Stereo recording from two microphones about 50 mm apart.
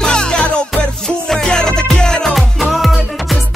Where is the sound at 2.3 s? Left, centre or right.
Centre.